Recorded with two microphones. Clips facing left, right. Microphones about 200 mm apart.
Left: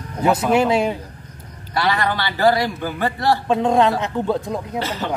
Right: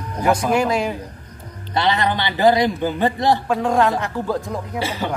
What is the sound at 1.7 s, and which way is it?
A man's voice, 20° right (ahead or behind).